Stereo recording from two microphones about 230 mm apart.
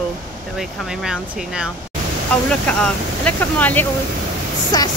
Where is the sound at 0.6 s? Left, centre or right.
Centre.